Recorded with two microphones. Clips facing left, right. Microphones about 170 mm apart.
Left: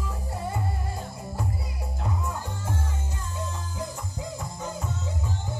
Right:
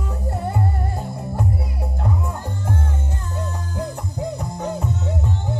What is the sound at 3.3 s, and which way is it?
Music, 60° right (ahead or behind).